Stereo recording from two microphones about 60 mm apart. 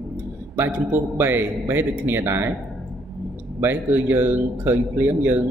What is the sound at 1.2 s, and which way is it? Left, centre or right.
Speech, right.